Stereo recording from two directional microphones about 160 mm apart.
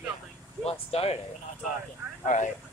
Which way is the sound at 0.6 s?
40° left (ahead or behind).